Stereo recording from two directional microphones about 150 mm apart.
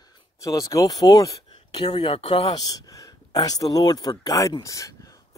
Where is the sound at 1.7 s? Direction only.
40° left (ahead or behind).